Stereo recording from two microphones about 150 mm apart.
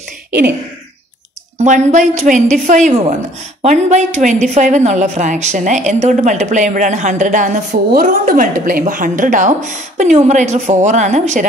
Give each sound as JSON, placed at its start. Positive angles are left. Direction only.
{"t": 1.6, "sound": "a woman's voice", "side_deg": -55}